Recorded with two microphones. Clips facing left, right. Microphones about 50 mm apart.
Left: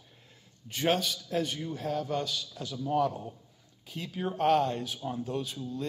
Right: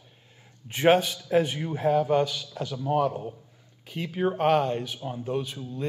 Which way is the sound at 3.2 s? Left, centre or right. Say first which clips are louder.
Right 6 dB; right.